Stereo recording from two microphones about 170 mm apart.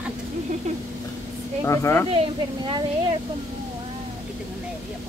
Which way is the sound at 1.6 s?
15° left (ahead or behind).